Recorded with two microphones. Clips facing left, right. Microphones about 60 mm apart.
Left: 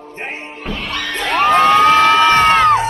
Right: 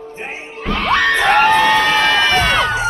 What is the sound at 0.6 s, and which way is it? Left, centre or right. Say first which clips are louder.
Music: right 7 dB; right.